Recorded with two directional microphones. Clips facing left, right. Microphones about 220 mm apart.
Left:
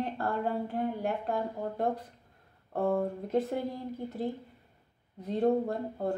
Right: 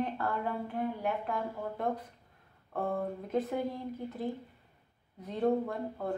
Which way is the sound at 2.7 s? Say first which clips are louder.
Left 5 dB; 40° left (ahead or behind).